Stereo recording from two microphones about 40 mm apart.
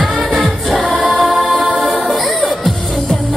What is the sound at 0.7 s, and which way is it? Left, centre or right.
Music, right.